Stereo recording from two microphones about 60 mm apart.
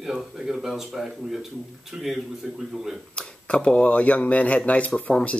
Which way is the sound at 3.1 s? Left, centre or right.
Centre.